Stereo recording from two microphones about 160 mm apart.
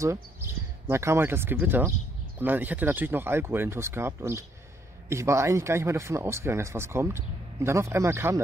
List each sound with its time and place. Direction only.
0.0 s speech: 20° right (ahead or behind)